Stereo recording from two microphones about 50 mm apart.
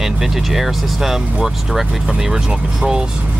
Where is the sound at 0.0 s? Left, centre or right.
Centre.